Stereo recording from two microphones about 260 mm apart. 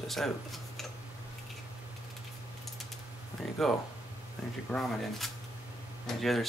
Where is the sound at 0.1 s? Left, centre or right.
Centre.